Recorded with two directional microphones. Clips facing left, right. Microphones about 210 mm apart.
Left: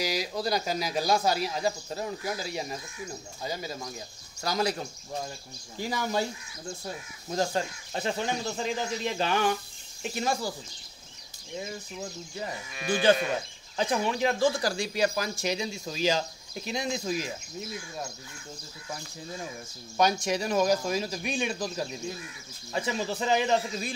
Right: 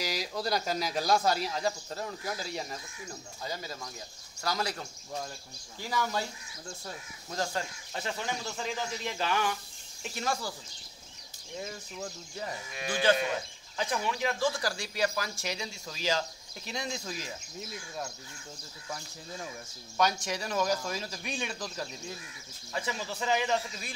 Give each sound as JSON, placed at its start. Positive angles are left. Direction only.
{"t": 0.0, "sound": "a sound", "side_deg": 0}
{"t": 0.4, "sound": "speech", "side_deg": 0}
{"t": 11.6, "sound": "speech", "side_deg": 5}
{"t": 12.7, "sound": "speech", "side_deg": -20}
{"t": 13.7, "sound": "speech", "side_deg": 30}
{"t": 20.0, "sound": "speech", "side_deg": 15}
{"t": 22.7, "sound": "speech", "side_deg": 25}